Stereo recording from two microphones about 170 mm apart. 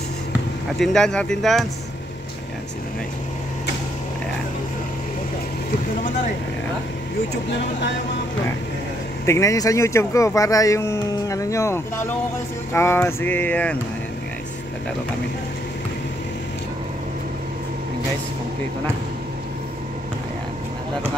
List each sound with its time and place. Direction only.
0.7 s speech: centre (ahead or behind)
9.2 s speech: 15° left (ahead or behind)